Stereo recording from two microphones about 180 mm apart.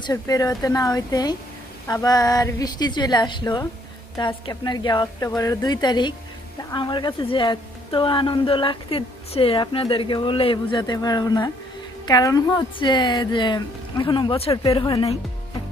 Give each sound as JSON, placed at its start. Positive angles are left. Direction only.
{"t": 0.0, "sound": "speech", "side_deg": 20}